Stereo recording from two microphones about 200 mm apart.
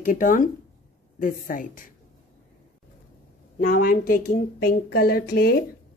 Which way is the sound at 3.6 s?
45° left (ahead or behind).